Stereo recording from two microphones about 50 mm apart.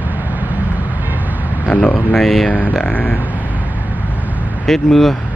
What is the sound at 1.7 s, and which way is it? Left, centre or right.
Speech, left.